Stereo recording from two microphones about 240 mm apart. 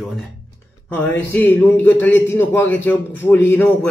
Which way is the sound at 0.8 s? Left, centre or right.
Centre.